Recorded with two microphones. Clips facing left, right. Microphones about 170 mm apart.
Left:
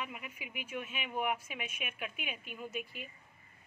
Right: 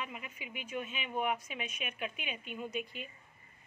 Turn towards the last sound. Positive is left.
turn(degrees=5)  # may be behind; listen again after turning